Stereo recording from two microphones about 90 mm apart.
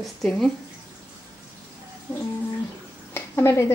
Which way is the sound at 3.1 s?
30° left (ahead or behind).